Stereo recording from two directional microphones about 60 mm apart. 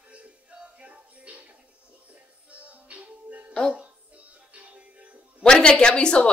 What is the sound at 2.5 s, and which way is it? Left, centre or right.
Music, right.